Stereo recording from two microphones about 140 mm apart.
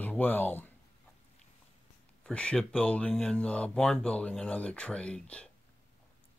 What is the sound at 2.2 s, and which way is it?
Speech, 5° left (ahead or behind).